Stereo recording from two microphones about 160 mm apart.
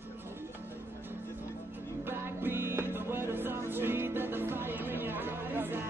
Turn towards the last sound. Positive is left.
turn(degrees=-15)  # may be behind; listen again after turning